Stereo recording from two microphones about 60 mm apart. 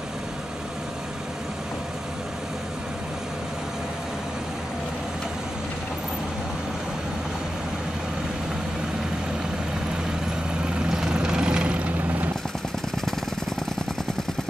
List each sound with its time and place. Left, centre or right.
10.9 s vehicle: centre